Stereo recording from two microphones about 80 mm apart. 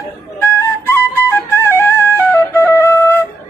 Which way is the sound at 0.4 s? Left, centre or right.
Left.